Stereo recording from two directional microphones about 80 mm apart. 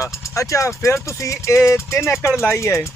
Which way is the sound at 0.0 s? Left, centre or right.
Left.